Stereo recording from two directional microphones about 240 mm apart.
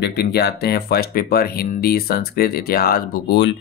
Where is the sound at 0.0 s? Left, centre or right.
Left.